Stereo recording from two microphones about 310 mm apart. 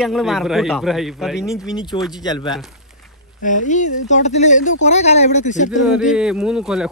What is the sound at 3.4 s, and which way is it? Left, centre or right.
Speech, left.